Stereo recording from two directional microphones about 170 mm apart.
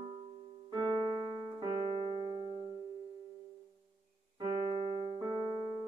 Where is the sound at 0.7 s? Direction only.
20° right (ahead or behind).